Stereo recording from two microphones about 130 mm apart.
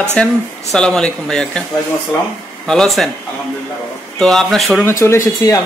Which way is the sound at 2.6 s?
5° left (ahead or behind).